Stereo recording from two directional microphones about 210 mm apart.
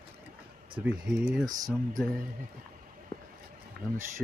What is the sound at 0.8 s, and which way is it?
Speech, 5° right (ahead or behind).